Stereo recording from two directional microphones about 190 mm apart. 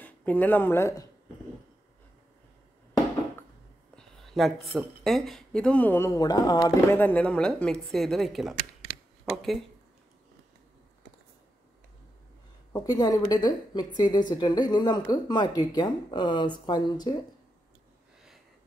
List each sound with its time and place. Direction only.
0.0 s speech: 10° left (ahead or behind)
3.9 s speech: centre (ahead or behind); by 7.0 s 20° left (ahead or behind)
7.0 s speech: 10° left (ahead or behind)
12.8 s a woman's voice: 20° left (ahead or behind)